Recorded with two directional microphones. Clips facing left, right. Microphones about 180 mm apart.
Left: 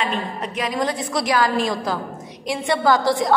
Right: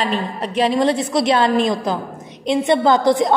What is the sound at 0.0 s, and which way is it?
A woman's voice, 35° right (ahead or behind).